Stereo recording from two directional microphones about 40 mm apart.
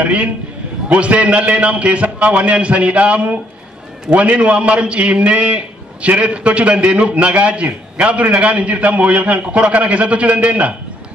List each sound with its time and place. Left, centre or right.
0.0 s a man's voice: right